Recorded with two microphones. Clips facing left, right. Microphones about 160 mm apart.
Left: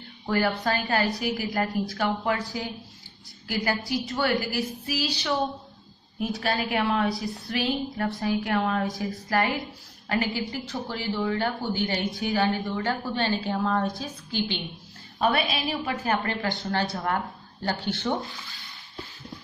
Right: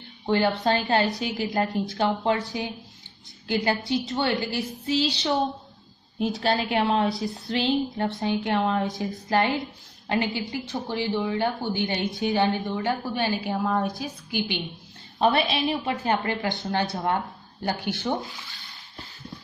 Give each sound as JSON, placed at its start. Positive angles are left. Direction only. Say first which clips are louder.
{"t": 0.3, "sound": "a woman's voice", "louder": "right 3 dB", "side_deg": -25}
{"t": 15.1, "sound": "a woman's voice", "louder": "right 3 dB", "side_deg": -30}
{"t": 18.1, "sound": "speech", "louder": "even", "side_deg": 0}